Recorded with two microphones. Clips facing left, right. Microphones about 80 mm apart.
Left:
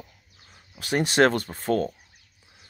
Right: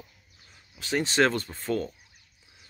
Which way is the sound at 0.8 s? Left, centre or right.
Left.